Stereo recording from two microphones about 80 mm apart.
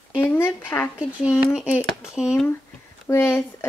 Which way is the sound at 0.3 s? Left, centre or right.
Left.